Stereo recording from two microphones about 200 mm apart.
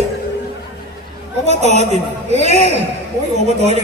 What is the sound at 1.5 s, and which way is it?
Speech, 35° right (ahead or behind).